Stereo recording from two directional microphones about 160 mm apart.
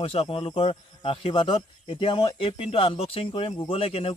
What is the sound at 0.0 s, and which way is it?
Speech, 35° left (ahead or behind).